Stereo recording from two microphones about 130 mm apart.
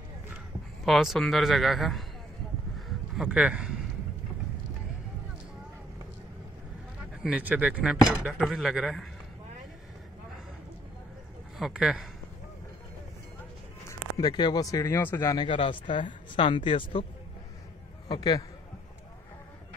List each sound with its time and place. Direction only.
0.8 s a man's voice: centre (ahead or behind)
3.2 s speech: 10° right (ahead or behind)
7.2 s a man's voice: 10° right (ahead or behind)
11.5 s speech: 5° right (ahead or behind)
13.8 s speech: 30° left (ahead or behind)
15.3 s speech: 40° left (ahead or behind)
18.0 s a man's voice: 35° left (ahead or behind)